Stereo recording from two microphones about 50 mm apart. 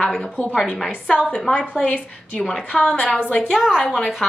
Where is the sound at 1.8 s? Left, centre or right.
Left.